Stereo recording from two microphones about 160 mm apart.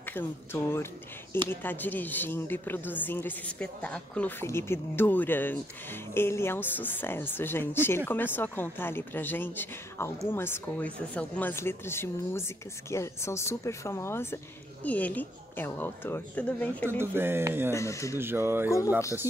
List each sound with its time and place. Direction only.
0.0 s speech: 10° left (ahead or behind)
17.0 s speech: 15° right (ahead or behind)
17.7 s speech: 20° left (ahead or behind)
18.1 s speech: 15° right (ahead or behind)